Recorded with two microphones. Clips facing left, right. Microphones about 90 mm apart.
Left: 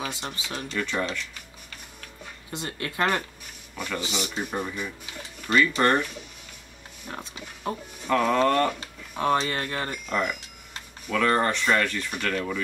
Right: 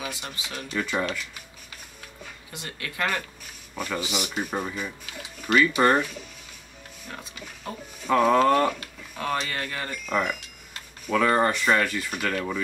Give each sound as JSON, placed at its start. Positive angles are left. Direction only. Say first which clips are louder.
{"t": 0.1, "sound": "speech", "louder": "left 2 dB", "side_deg": 25}
{"t": 0.7, "sound": "speech", "louder": "right 2 dB", "side_deg": -10}
{"t": 2.5, "sound": "speech", "louder": "left 5 dB", "side_deg": 30}
{"t": 4.1, "sound": "speech", "louder": "right 1 dB", "side_deg": -10}
{"t": 7.1, "sound": "speech", "louder": "left 3 dB", "side_deg": 25}
{"t": 8.1, "sound": "speech", "louder": "right 3 dB", "side_deg": -10}
{"t": 8.7, "sound": "speech", "louder": "left 3 dB", "side_deg": 25}
{"t": 10.0, "sound": "speech", "louder": "right 4 dB", "side_deg": -5}